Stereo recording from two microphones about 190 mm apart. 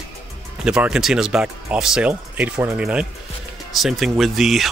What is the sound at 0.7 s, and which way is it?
Speech, 5° right (ahead or behind).